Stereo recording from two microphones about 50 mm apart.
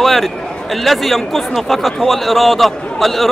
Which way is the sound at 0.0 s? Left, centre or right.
Centre.